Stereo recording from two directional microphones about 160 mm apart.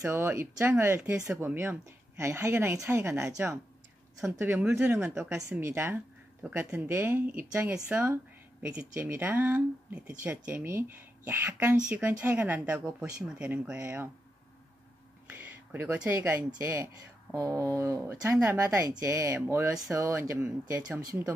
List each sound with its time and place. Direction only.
0.0 s speech: 15° right (ahead or behind)
15.3 s speech: 15° right (ahead or behind)